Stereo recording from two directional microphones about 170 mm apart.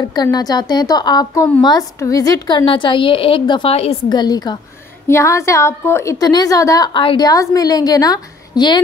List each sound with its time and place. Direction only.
0.0 s a woman's voice: 25° left (ahead or behind)
4.2 s a woman's voice: 25° left (ahead or behind)